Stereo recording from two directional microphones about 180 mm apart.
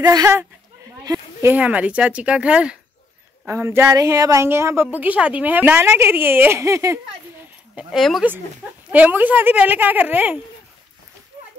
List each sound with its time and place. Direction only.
0.0 s a woman's voice: 20° right (ahead or behind)
7.7 s a woman's voice: centre (ahead or behind)